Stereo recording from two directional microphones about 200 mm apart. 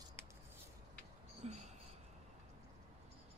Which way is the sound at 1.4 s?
35° right (ahead or behind).